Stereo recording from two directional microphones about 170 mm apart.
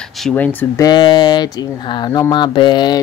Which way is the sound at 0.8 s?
25° left (ahead or behind).